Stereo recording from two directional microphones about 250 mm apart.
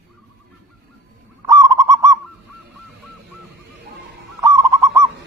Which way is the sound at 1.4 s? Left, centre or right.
Centre.